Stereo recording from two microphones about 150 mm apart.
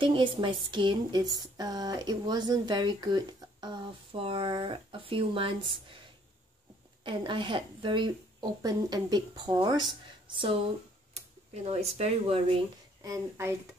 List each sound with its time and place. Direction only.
0.0 s speech: 35° right (ahead or behind)
7.0 s speech: 35° right (ahead or behind)
11.1 s speech: 45° right (ahead or behind)
13.0 s speech: 20° right (ahead or behind)